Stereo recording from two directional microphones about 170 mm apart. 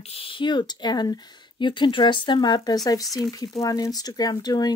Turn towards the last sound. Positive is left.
turn(degrees=20)  # may be behind; listen again after turning